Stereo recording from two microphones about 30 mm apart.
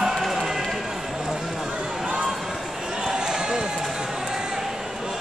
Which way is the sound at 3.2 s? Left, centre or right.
Right.